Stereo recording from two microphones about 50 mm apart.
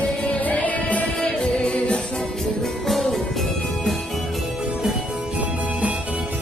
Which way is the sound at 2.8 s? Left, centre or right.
Centre.